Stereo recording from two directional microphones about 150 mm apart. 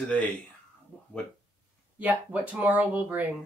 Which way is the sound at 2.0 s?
10° right (ahead or behind).